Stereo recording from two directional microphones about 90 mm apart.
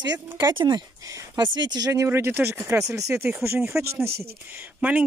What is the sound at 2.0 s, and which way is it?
Speech, 25° right (ahead or behind).